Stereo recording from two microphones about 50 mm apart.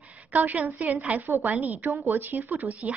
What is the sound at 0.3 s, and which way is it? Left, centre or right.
Speech, right.